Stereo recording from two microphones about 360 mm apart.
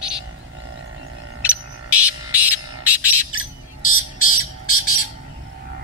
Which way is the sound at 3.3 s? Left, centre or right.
Left.